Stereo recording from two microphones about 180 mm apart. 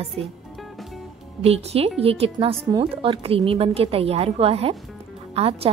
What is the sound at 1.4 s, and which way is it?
A woman's voice, 35° right (ahead or behind).